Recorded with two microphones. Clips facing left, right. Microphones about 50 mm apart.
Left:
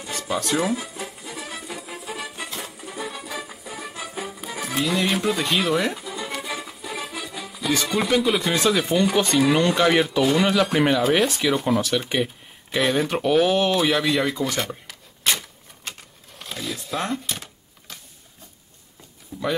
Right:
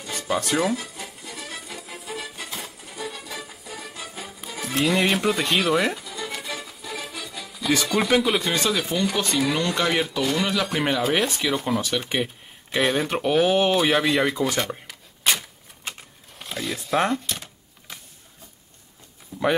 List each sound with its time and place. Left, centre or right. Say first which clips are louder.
0.3 s speech: right 1 dB; centre
0.6 s music: even; centre
4.8 s speech: right 2 dB; centre
5.9 s music: left 2 dB; centre
8.2 s speech: left 2 dB; centre
14.9 s a sound: right 1 dB; centre
17.1 s speech: right 1 dB; centre
17.9 s patter: right 1 dB; centre
19.3 s a sound: right 3 dB; right